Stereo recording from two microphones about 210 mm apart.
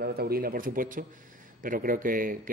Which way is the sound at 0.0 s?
45° right (ahead or behind).